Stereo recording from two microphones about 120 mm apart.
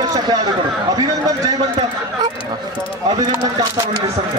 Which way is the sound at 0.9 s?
30° right (ahead or behind).